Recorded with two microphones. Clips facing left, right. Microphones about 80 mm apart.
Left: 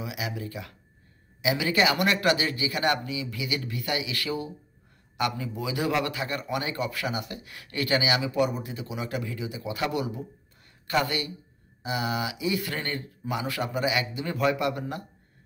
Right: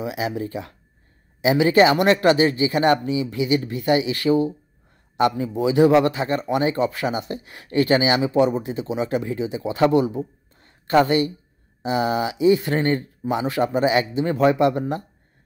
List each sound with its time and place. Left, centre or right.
0.0 s speech: right